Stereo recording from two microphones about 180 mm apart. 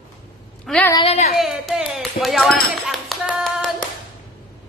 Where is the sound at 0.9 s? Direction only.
35° left (ahead or behind).